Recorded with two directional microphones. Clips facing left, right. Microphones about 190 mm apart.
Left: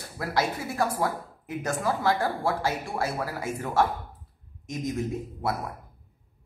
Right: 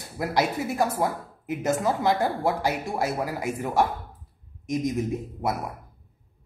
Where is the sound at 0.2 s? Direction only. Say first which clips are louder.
Right 3 dB; 20° right (ahead or behind).